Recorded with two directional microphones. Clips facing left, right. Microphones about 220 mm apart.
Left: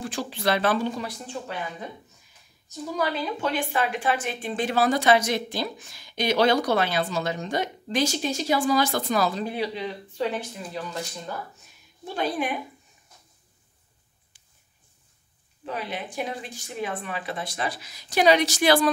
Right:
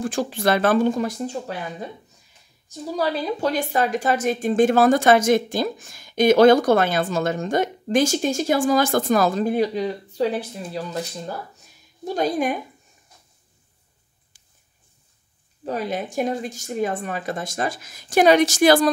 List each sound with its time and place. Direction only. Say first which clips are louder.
0.0 s a woman's voice: right 5 dB; 50° right (ahead or behind)
2.9 s a woman's voice: right 4 dB; 35° right (ahead or behind)
15.6 s a woman's voice: right 6 dB; 45° right (ahead or behind)